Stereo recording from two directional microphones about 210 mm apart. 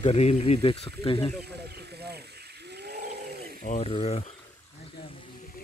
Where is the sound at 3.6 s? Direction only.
35° left (ahead or behind).